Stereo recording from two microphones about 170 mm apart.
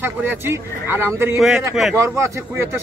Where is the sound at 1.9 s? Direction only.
15° right (ahead or behind).